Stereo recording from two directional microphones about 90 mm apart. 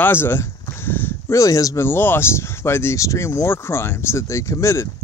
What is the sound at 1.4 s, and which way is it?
Speech, 40° left (ahead or behind).